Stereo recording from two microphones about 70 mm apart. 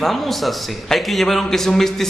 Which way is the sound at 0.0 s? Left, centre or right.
Centre.